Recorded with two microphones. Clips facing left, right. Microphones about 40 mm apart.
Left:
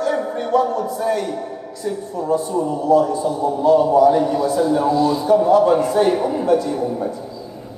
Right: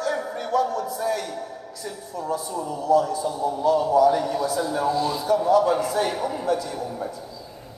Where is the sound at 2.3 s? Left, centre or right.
Left.